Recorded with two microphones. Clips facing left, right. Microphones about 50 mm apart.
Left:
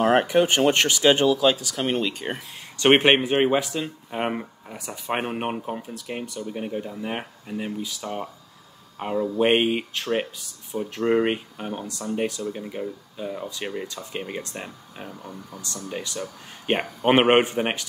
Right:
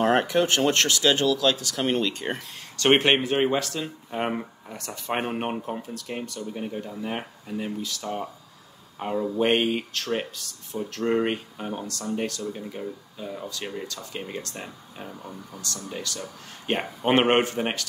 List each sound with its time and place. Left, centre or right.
0.0 s speech: centre
1.6 s speech: centre
2.8 s speech: centre
9.4 s speech: centre
15.0 s speech: centre
15.9 s speech: centre